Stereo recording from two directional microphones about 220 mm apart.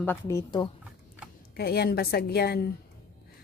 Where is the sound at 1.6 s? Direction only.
45° left (ahead or behind).